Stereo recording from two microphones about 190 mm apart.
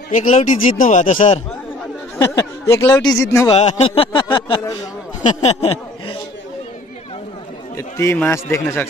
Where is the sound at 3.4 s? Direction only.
35° left (ahead or behind).